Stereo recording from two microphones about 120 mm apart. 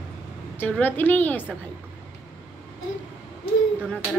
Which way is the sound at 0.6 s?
15° left (ahead or behind).